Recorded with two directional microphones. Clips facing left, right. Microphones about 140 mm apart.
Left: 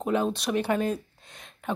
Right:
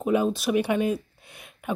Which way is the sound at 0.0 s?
5° right (ahead or behind).